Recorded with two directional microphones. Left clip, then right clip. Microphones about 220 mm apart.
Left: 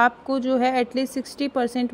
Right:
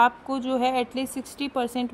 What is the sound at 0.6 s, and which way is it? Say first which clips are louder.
Speech: left 3 dB; 40° left (ahead or behind).